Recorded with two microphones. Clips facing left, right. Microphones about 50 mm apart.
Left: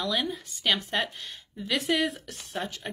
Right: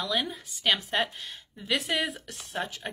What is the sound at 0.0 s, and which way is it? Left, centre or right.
Speech, centre.